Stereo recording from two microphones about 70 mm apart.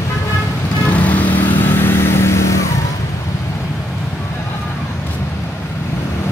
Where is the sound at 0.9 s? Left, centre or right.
Left.